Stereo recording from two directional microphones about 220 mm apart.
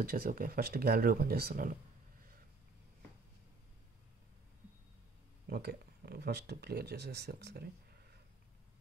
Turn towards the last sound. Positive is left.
turn(degrees=-45)  # may be behind; listen again after turning